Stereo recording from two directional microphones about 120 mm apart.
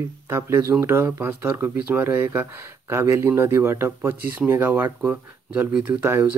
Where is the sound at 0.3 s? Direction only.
20° right (ahead or behind).